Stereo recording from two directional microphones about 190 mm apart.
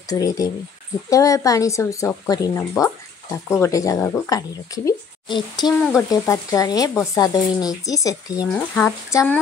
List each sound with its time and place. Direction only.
0.1 s a woman's voice: 20° left (ahead or behind)
5.7 s speech: centre (ahead or behind)
6.0 s a woman's voice: 15° left (ahead or behind)
8.5 s a woman's voice: 5° left (ahead or behind)